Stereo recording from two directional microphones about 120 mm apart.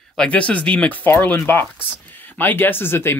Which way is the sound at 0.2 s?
10° left (ahead or behind).